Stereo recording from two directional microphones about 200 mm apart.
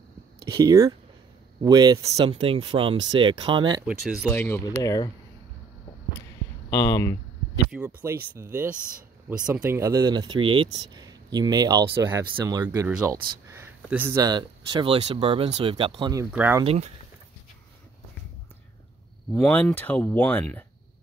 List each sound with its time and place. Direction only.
0.5 s speech: 20° right (ahead or behind)
3.8 s speech: 5° right (ahead or behind)
4.3 s speech: 10° left (ahead or behind)
6.7 s speech: 15° left (ahead or behind)
7.7 s speech: 10° right (ahead or behind)
14.1 s speech: 20° right (ahead or behind)
16.3 s speech: 10° right (ahead or behind)
16.6 s speech: 35° right (ahead or behind)
19.3 s speech: 5° left (ahead or behind)